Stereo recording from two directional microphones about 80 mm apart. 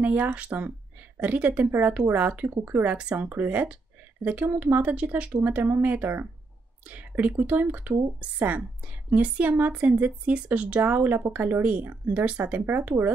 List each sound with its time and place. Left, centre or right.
0.0 s a woman's voice: right